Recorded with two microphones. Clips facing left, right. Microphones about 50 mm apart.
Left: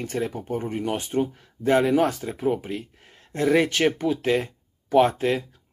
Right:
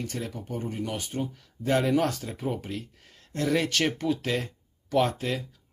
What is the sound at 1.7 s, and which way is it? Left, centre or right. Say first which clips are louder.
Speech: left 4 dB; centre.